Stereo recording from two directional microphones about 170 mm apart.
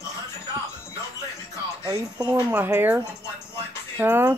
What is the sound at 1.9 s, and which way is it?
Speech, 25° right (ahead or behind).